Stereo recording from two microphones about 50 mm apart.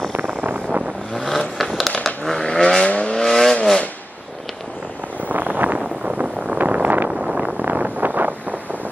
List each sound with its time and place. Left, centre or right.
0.3 s vehicle: right
1.1 s vehicle: centre
1.6 s a sound: centre
2.0 s vehicle: centre
3.3 s vehicle: centre
5.3 s vehicle: right
6.0 s wind noise: right
7.1 s a sound: centre
7.6 s wind noise: right